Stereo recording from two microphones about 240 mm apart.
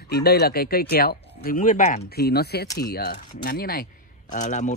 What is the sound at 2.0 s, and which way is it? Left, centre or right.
Speech, left.